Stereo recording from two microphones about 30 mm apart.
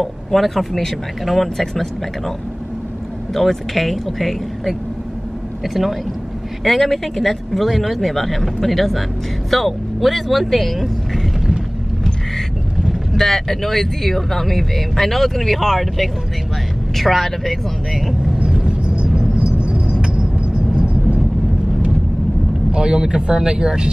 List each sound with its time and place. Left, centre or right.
0.0 s speech: centre
3.3 s speech: centre
13.1 s speech: centre
19.3 s vehicle: right
22.7 s speech: right